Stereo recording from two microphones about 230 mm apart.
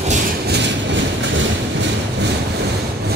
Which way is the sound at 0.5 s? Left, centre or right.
Right.